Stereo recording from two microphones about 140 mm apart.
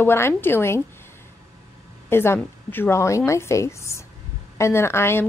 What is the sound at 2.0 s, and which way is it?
A woman's voice, 15° left (ahead or behind).